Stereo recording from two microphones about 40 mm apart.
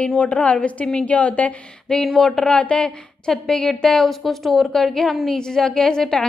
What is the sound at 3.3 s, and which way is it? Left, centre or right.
A woman's voice, centre.